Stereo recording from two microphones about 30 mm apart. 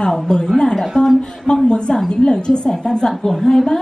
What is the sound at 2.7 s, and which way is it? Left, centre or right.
A woman's voice, centre.